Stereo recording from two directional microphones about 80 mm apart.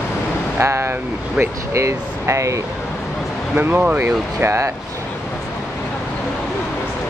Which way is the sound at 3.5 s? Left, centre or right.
Right.